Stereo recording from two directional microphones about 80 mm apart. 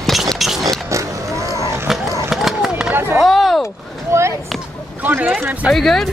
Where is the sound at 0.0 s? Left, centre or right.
Centre.